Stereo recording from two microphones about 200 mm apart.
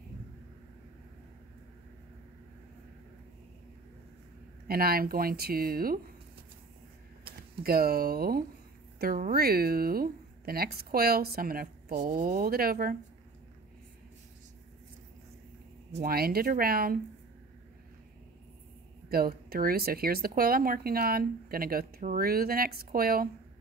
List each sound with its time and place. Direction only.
4.6 s a woman's voice: 50° right (ahead or behind)
7.2 s a woman's voice: 50° right (ahead or behind)
16.0 s a woman's voice: 50° right (ahead or behind)
19.0 s a woman's voice: 50° right (ahead or behind)